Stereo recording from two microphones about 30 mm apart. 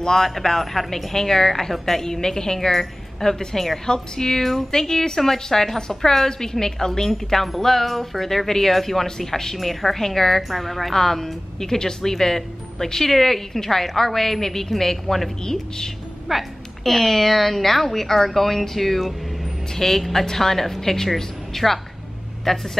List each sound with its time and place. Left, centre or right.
0.0 s speech: centre
3.8 s speech: left
16.3 s a woman's voice: centre
16.8 s a woman's voice: centre
19.7 s a woman's voice: centre